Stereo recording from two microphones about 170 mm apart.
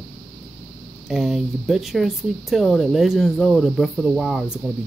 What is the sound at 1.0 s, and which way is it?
Speech, 5° right (ahead or behind).